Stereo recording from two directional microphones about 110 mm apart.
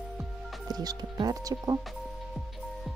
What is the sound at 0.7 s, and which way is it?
Speech, 35° right (ahead or behind).